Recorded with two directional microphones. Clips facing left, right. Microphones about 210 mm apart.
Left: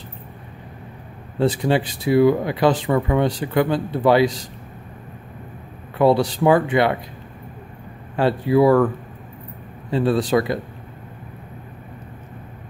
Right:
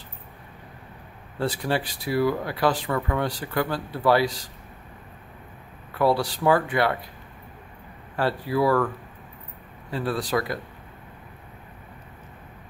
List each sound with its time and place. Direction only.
1.4 s speech: 20° left (ahead or behind)
5.9 s speech: 20° left (ahead or behind)
8.2 s speech: 20° left (ahead or behind)
9.8 s speech: 25° left (ahead or behind)